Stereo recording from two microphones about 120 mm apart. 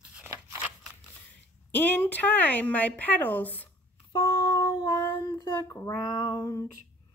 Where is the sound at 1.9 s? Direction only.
15° left (ahead or behind).